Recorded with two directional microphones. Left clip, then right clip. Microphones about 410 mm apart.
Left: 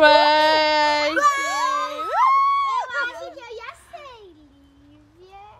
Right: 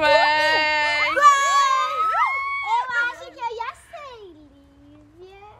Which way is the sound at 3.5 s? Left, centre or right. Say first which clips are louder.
Right 6 dB; centre.